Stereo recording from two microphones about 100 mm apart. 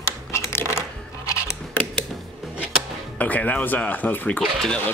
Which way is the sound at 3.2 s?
15° left (ahead or behind).